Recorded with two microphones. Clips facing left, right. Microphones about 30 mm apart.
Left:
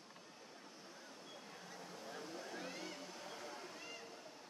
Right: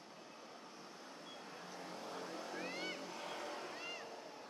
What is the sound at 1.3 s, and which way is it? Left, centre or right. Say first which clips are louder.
Vehicle: right 3 dB; right.